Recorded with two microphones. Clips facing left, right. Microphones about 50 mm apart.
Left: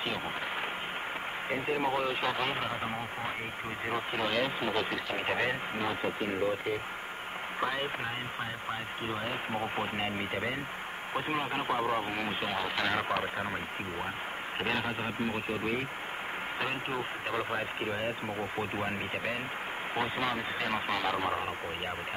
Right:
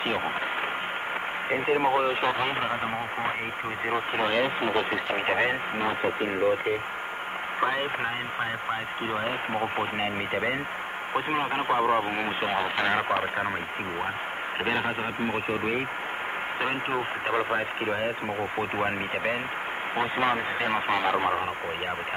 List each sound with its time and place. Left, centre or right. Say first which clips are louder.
1.5 s speech: right 7 dB; right
3.9 s speech: right 5 dB; right
9.1 s speech: right 6 dB; right
14.6 s speech: right 4 dB; right